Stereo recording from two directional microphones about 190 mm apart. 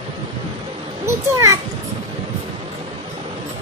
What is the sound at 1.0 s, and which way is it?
Children playing, 15° right (ahead or behind).